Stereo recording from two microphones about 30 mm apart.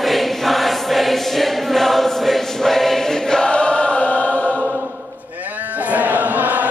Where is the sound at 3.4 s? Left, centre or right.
Left.